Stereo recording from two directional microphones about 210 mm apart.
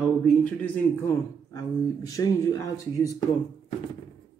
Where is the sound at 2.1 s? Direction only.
15° left (ahead or behind).